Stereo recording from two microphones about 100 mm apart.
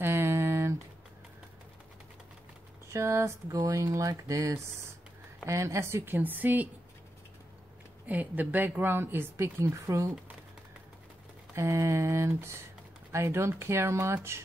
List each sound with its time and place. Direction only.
0.0 s a sound: 25° right (ahead or behind)
2.9 s speech: 30° right (ahead or behind)
8.1 s speech: 15° right (ahead or behind)
11.5 s speech: 30° right (ahead or behind)